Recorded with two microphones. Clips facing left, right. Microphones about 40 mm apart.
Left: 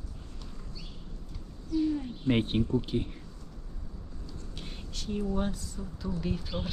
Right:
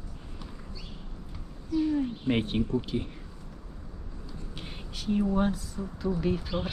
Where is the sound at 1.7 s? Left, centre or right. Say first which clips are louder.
Right 2 dB; centre.